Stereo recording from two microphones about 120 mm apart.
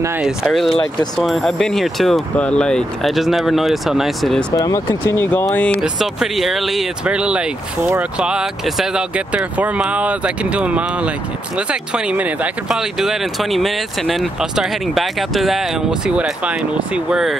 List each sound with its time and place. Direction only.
0.2 s speech: centre (ahead or behind)
4.6 s speech: 25° left (ahead or behind)
5.8 s speech: centre (ahead or behind)